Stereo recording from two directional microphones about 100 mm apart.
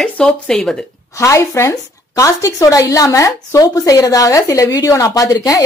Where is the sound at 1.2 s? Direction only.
30° left (ahead or behind).